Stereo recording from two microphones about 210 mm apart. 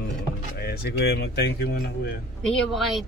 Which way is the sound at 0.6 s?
45° left (ahead or behind).